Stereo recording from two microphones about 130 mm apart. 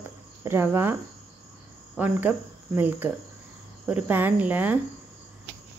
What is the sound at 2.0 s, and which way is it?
Speech, 15° right (ahead or behind).